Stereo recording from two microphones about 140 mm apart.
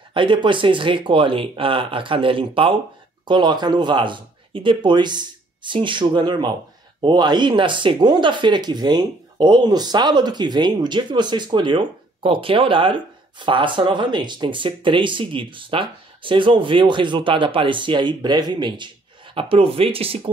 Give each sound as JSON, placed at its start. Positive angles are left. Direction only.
{"t": 0.1, "sound": "speech", "side_deg": -35}